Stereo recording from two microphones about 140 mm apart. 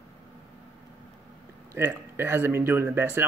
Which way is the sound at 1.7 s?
15° right (ahead or behind).